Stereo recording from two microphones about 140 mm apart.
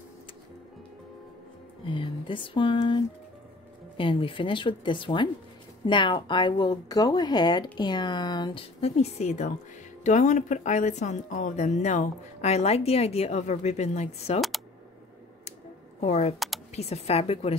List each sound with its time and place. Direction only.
1.9 s speech: 35° left (ahead or behind)
8.8 s speech: 50° left (ahead or behind)
16.0 s speech: 50° left (ahead or behind)
16.3 s a sound: centre (ahead or behind)
16.7 s speech: 50° left (ahead or behind)